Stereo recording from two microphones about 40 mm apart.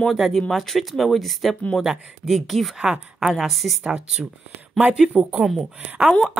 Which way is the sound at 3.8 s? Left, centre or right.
Right.